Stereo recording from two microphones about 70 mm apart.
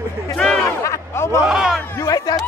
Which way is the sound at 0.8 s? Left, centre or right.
Left.